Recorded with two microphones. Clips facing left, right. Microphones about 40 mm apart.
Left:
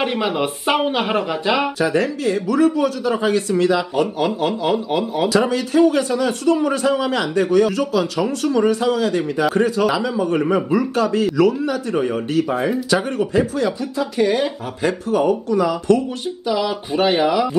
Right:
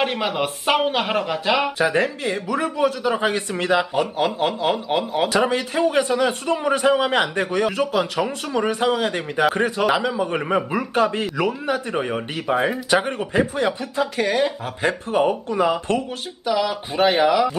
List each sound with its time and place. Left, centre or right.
0.0 s speech: centre
1.8 s a man's voice: right
16.4 s speech: centre